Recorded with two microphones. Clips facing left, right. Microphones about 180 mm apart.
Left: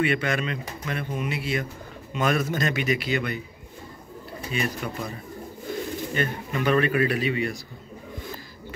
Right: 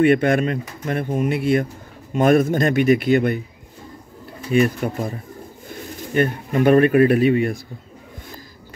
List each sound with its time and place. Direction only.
0.0 s speech: 55° right (ahead or behind)
4.5 s speech: 50° right (ahead or behind)
6.1 s speech: 50° right (ahead or behind)